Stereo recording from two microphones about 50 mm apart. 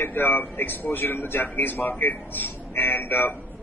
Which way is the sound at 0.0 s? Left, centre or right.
Left.